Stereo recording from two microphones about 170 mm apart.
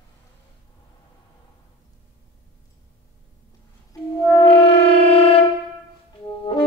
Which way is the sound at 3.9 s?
25° left (ahead or behind).